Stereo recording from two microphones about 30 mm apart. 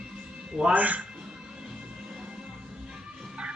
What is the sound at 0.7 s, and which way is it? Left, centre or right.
Speech, right.